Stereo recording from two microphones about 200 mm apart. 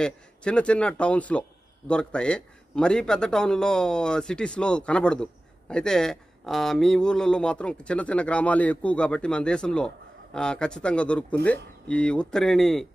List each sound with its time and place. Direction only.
0.0 s a man's voice: 5° left (ahead or behind)